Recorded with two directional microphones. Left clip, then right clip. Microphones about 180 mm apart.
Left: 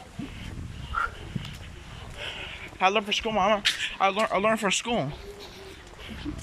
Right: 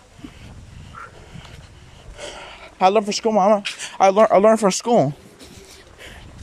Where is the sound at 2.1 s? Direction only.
30° right (ahead or behind).